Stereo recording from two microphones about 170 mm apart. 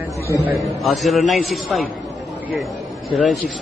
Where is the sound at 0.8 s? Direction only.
Centre (ahead or behind).